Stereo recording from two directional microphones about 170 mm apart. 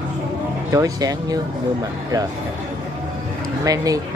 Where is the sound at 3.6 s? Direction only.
20° right (ahead or behind).